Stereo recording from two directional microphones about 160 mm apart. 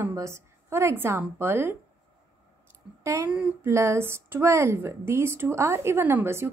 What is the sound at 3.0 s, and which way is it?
A woman's voice, 15° right (ahead or behind).